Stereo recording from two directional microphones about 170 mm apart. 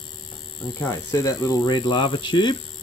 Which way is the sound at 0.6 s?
20° left (ahead or behind).